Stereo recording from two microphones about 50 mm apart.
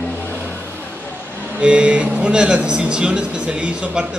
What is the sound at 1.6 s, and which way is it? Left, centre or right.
Speech, right.